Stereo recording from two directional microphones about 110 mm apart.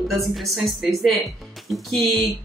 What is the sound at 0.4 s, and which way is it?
A woman's voice, centre (ahead or behind).